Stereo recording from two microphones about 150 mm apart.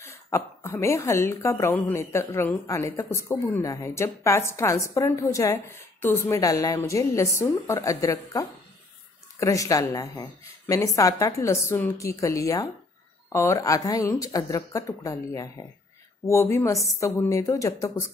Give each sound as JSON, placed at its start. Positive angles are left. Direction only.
{"t": 0.0, "sound": "speech", "side_deg": 20}